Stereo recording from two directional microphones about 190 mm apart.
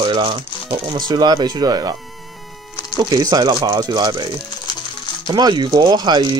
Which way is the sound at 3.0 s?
20° right (ahead or behind).